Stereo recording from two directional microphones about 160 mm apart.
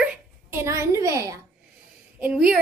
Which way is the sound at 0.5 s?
15° right (ahead or behind).